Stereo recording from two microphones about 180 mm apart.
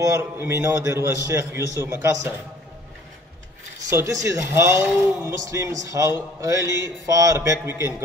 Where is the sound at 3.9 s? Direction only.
15° right (ahead or behind).